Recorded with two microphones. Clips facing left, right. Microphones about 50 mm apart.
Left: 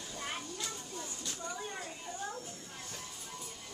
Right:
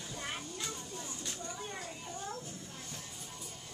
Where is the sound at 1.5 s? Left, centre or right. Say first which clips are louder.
Left 1 dB; centre.